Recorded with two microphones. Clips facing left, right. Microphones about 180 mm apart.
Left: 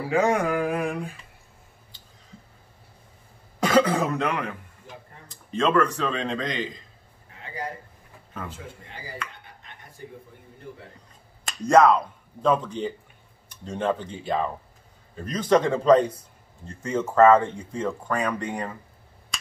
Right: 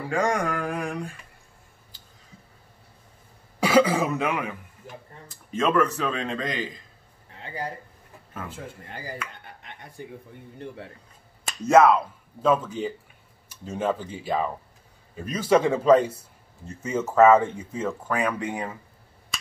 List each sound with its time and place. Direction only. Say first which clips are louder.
0.0 s speech: left 3 dB; 5° left (ahead or behind)
3.5 s speech: right 1 dB; 5° right (ahead or behind)
8.3 s a sound: left 1 dB; 5° right (ahead or behind)
8.8 s speech: right 4 dB; 45° right (ahead or behind)
11.6 s speech: even; 5° right (ahead or behind)